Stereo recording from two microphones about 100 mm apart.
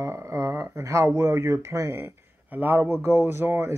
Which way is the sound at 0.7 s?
30° right (ahead or behind).